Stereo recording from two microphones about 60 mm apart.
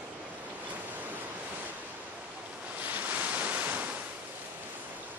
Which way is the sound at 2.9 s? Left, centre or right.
Right.